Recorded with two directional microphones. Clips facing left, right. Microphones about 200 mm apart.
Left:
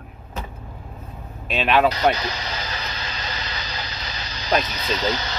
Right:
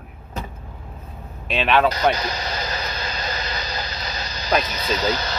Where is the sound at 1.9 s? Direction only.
45° right (ahead or behind).